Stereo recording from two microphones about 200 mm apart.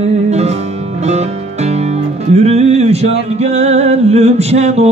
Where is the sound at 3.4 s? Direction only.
35° right (ahead or behind).